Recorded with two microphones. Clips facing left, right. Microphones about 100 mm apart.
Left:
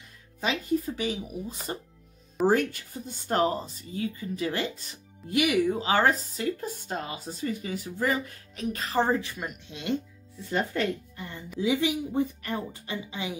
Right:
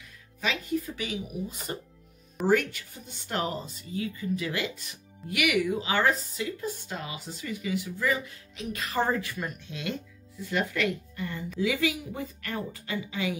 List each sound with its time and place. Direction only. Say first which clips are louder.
0.4 s speech: left 2 dB; 35° left (ahead or behind)
9.0 s speech: right 1 dB; 20° left (ahead or behind)